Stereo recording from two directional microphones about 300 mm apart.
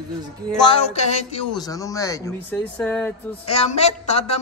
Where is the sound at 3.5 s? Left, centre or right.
Left.